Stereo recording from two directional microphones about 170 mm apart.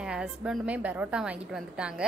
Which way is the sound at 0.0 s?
5° right (ahead or behind).